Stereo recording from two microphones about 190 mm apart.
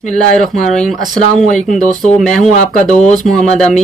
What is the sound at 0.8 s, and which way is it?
Speech, centre (ahead or behind).